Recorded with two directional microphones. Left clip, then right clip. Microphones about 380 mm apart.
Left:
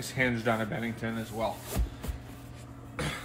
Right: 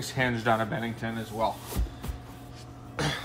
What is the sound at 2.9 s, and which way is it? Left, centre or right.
Cough, centre.